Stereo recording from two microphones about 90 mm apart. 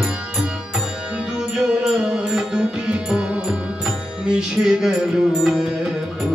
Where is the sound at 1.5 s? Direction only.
10° right (ahead or behind).